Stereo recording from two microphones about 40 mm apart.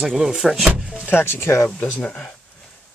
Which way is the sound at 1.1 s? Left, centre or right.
Left.